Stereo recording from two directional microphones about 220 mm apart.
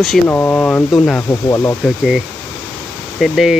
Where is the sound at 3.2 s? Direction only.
Centre (ahead or behind).